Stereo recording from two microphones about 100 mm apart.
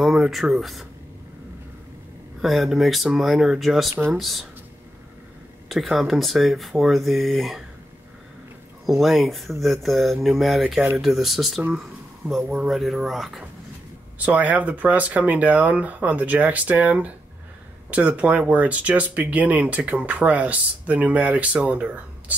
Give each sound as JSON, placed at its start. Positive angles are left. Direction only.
{"t": 0.0, "sound": "speech", "side_deg": -5}
{"t": 2.4, "sound": "speech", "side_deg": 0}
{"t": 5.7, "sound": "speech", "side_deg": 0}
{"t": 9.0, "sound": "speech", "side_deg": 0}
{"t": 14.1, "sound": "speech", "side_deg": -15}